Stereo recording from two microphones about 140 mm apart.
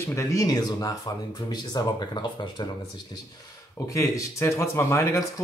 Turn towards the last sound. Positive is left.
turn(degrees=20)  # may be behind; listen again after turning